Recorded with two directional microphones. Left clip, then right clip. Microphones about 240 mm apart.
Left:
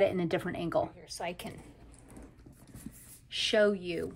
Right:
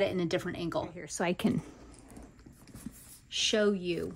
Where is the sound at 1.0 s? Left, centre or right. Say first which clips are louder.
Right 6 dB; right.